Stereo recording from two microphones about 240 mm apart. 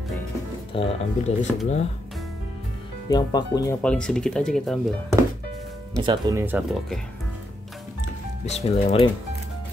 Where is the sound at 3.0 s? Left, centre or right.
Centre.